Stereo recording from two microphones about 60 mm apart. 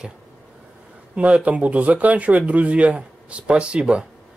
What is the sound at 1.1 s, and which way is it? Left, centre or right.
Speech, right.